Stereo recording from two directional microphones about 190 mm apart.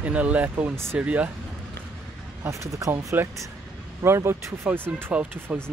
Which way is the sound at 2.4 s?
15° right (ahead or behind).